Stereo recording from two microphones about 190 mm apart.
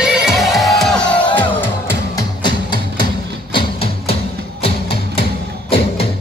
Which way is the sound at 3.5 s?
30° left (ahead or behind).